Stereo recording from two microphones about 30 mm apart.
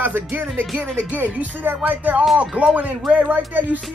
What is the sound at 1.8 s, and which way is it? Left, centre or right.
Speech, right.